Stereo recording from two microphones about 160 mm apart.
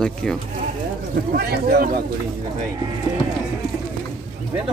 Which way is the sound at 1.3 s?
75° right (ahead or behind).